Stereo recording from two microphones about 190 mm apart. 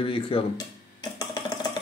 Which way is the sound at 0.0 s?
30° left (ahead or behind).